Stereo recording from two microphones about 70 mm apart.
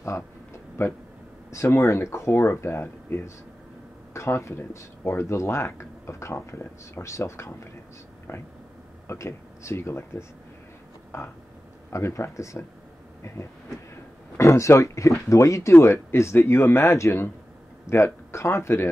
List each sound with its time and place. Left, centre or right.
0.0 s a sound: left
1.5 s speech: left
11.9 s speech: left
14.3 s speech: left